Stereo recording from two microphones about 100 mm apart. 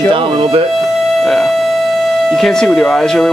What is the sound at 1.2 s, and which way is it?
Music, centre (ahead or behind).